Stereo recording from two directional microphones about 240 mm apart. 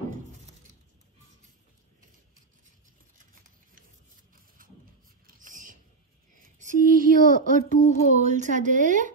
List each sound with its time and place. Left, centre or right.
4.6 s a sound: right
7.2 s a child's voice: left
8.1 s speech: right